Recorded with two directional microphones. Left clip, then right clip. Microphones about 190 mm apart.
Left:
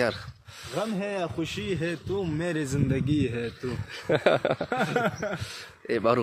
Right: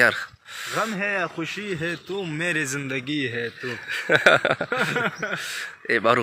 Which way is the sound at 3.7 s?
10° left (ahead or behind).